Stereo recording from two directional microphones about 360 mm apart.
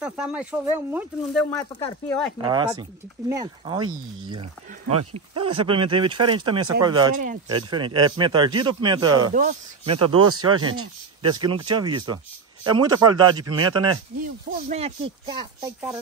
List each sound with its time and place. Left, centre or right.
0.0 s speech: centre
2.4 s speech: centre
5.7 s speech: centre
9.9 s speech: right
11.2 s speech: centre